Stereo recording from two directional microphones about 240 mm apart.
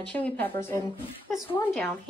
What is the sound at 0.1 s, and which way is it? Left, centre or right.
Speech, centre.